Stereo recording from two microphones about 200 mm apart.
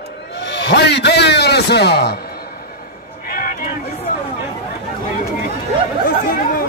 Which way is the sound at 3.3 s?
45° left (ahead or behind).